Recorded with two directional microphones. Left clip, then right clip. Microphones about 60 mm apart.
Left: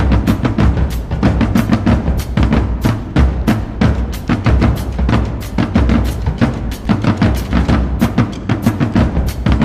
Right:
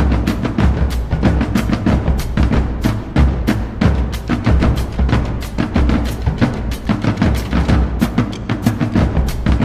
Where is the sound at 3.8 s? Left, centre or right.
Left.